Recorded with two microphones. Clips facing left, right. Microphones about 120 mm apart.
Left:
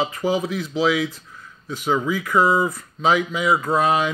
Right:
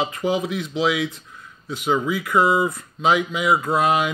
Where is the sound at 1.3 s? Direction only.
10° right (ahead or behind).